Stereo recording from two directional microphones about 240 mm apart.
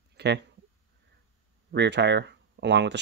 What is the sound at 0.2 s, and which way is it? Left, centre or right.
Speech, right.